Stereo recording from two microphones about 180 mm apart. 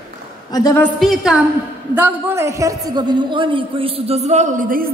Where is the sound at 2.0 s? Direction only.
10° right (ahead or behind).